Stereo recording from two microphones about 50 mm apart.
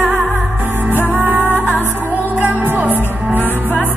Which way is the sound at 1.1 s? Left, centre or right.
Right.